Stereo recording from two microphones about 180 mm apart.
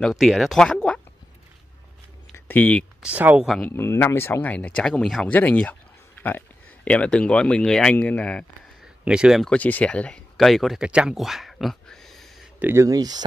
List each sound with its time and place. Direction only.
0.0 s speech: centre (ahead or behind)
2.3 s a sound: 10° left (ahead or behind)
3.0 s speech: 10° right (ahead or behind)
3.7 s speech: 15° left (ahead or behind)
9.0 s speech: 5° right (ahead or behind)
12.5 s speech: 15° right (ahead or behind)